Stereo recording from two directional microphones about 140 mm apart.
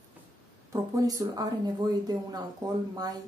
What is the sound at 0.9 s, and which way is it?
Speech, 25° right (ahead or behind).